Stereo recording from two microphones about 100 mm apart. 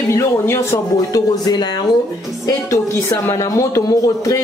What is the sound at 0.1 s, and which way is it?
Speech, 30° left (ahead or behind).